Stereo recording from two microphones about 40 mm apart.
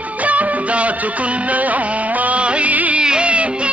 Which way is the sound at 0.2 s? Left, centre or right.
Right.